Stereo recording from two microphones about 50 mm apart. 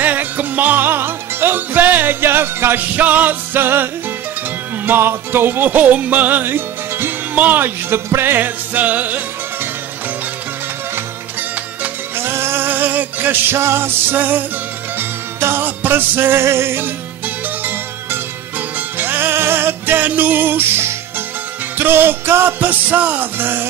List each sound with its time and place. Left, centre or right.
0.0 s music: right
3.0 s music: right
5.8 s music: right
6.4 s music: right
7.3 s music: right
7.9 s music: right
12.2 s music: right
13.6 s music: right
14.1 s music: right
15.0 s music: right
18.8 s music: right
20.0 s music: right